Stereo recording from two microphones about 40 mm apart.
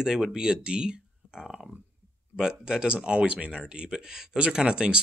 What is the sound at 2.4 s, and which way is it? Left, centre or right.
Speech, centre.